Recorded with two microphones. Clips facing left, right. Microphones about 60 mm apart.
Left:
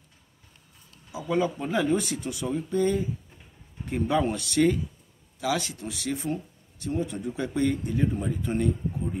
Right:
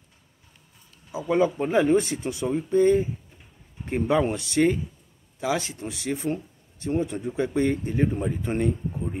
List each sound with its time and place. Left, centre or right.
1.3 s speech: right